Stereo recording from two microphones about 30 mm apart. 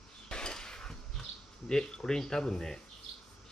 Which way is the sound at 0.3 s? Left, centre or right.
Left.